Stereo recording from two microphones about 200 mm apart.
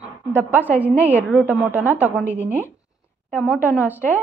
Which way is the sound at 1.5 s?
10° right (ahead or behind).